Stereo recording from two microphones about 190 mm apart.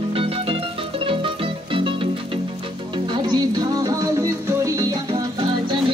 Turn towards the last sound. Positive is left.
turn(degrees=-25)  # may be behind; listen again after turning